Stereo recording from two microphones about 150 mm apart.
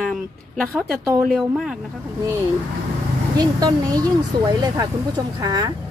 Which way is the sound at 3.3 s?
25° right (ahead or behind).